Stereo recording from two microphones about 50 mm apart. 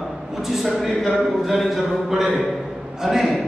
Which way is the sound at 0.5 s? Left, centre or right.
Centre.